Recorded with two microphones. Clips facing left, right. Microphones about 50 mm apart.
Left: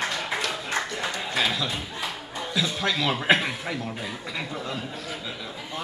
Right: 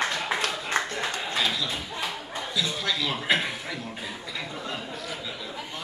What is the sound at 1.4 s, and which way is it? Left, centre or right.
Speech, centre.